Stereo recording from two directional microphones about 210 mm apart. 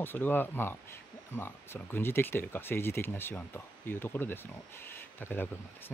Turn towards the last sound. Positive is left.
turn(degrees=10)  # may be behind; listen again after turning